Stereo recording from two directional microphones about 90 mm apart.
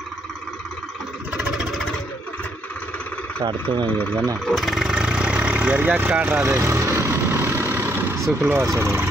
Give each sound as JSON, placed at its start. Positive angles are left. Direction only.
{"t": 3.6, "sound": "speech", "side_deg": -65}
{"t": 4.5, "sound": "vehicle", "side_deg": 0}
{"t": 8.6, "sound": "speech", "side_deg": -30}